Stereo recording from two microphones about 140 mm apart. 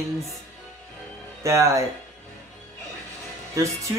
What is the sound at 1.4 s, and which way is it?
Speech, 20° right (ahead or behind).